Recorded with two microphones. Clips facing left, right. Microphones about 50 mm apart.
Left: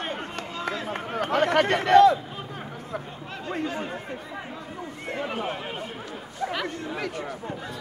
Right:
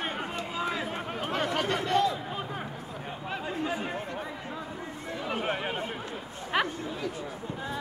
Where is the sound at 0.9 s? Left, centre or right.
Left.